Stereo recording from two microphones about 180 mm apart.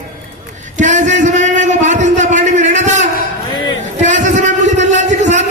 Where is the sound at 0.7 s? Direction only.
40° right (ahead or behind).